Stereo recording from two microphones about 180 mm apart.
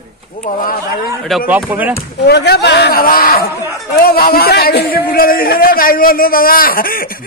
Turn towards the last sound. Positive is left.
turn(degrees=55)  # may be behind; listen again after turning